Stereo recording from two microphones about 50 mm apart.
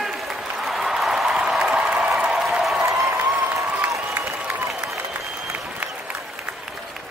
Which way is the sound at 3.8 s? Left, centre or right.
Right.